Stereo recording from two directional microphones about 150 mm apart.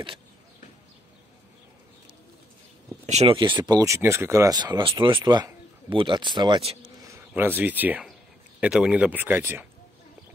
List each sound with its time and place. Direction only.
3.1 s speech: 45° right (ahead or behind)
3.3 s speech: 30° right (ahead or behind)
4.6 s a man's voice: 30° right (ahead or behind)
7.1 s speech: 15° right (ahead or behind)